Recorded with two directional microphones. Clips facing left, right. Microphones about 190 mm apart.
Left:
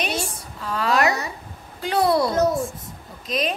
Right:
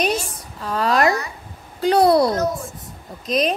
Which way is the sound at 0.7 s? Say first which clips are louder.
Right 3 dB; 40° right (ahead or behind).